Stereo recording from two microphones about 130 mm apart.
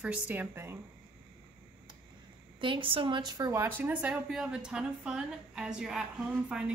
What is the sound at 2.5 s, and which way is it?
Speech, 40° right (ahead or behind).